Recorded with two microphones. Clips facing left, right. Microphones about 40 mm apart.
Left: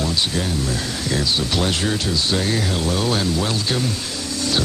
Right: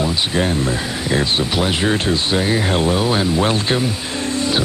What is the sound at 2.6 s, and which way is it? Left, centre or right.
Speech, right.